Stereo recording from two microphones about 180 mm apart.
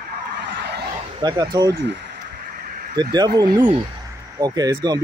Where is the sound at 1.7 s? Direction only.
75° right (ahead or behind).